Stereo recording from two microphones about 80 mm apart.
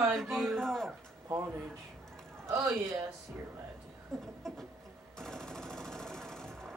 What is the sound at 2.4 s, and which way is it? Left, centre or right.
Speech, right.